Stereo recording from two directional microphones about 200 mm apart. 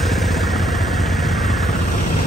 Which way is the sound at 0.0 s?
Centre (ahead or behind).